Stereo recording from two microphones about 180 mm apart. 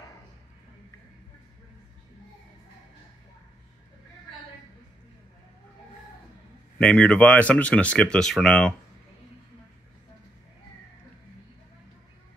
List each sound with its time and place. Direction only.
6.8 s speech: 5° left (ahead or behind)